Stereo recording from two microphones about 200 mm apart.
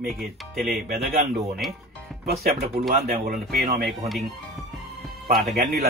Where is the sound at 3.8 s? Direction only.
Centre (ahead or behind).